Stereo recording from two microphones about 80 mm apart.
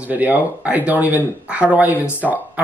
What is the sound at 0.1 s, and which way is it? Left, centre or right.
Speech, centre.